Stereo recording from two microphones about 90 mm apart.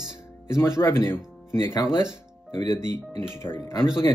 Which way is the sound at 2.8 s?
25° left (ahead or behind).